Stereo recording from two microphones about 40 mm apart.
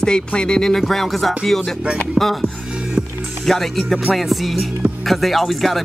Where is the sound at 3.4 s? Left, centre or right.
Centre.